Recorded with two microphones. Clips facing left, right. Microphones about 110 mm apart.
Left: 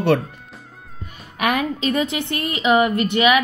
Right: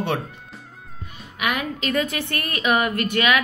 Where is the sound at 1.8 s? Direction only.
25° left (ahead or behind).